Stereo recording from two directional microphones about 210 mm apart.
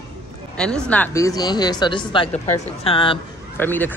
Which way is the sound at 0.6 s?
5° left (ahead or behind).